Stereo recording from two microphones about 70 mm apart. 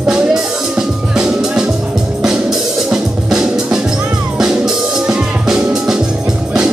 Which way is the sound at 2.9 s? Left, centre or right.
Centre.